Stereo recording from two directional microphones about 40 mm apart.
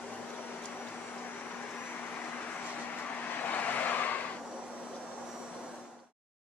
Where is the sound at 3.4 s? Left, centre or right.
Left.